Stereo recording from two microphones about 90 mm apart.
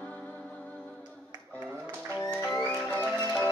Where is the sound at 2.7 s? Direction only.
25° left (ahead or behind).